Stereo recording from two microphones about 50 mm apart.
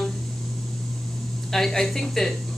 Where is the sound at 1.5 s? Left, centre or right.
Centre.